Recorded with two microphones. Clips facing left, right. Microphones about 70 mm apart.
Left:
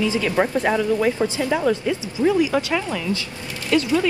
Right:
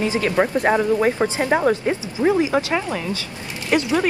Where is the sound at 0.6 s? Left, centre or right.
Right.